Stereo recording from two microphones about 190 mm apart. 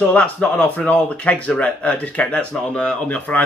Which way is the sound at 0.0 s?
10° left (ahead or behind).